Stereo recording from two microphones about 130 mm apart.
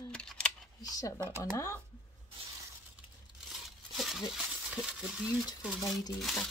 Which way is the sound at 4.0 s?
Centre (ahead or behind).